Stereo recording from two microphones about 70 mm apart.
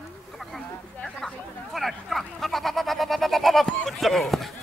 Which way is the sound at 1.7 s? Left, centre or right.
Centre.